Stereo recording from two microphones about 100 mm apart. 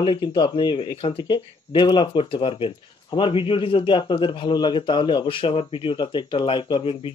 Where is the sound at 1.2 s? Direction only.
50° left (ahead or behind).